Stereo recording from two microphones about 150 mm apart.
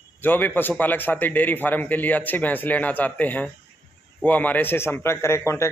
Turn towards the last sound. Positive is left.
turn(degrees=20)  # may be behind; listen again after turning